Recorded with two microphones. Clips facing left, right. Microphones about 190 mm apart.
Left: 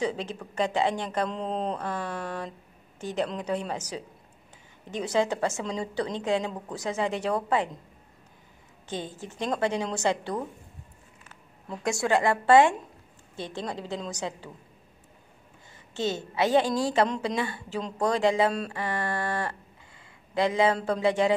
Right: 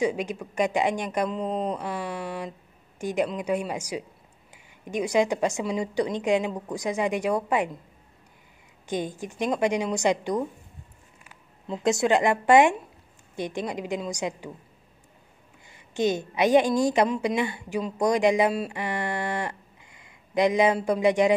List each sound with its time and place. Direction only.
0.0 s a woman's voice: 10° right (ahead or behind)
8.8 s a woman's voice: 15° right (ahead or behind)
11.6 s a woman's voice: 20° right (ahead or behind)
15.7 s a woman's voice: 15° right (ahead or behind)